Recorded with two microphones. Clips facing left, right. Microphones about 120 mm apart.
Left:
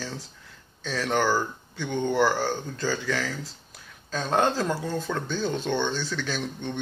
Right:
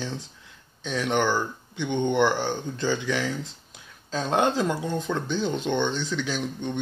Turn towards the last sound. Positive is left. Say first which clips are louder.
# right 2 dB
turn(degrees=-15)  # may be behind; listen again after turning